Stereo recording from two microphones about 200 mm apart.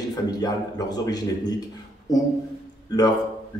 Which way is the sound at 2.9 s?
20° left (ahead or behind).